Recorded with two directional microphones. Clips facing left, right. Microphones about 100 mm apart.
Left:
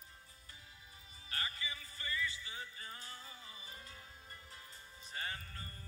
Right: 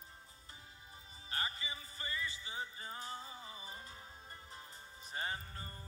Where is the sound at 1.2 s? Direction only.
25° right (ahead or behind).